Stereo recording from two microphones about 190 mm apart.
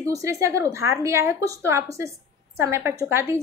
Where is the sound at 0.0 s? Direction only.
15° right (ahead or behind).